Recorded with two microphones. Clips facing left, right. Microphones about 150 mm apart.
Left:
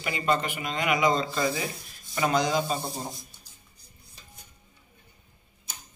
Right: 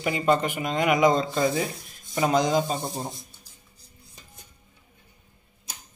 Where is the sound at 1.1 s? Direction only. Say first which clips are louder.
Right 4 dB; 20° right (ahead or behind).